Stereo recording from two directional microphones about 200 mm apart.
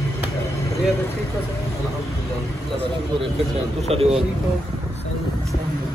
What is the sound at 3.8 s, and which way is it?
Speech, 30° right (ahead or behind).